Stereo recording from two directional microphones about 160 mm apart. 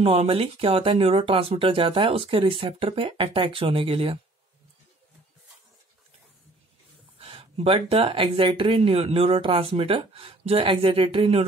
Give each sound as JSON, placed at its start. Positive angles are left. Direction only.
{"t": 0.0, "sound": "speech", "side_deg": -35}
{"t": 7.2, "sound": "speech", "side_deg": -35}